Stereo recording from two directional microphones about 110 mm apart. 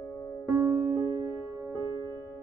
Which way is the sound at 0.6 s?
20° right (ahead or behind).